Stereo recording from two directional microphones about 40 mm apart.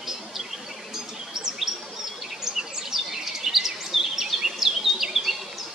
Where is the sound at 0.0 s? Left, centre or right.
Centre.